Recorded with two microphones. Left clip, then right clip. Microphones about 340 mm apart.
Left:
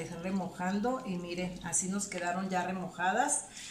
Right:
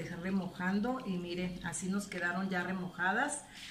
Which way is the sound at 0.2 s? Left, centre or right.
Centre.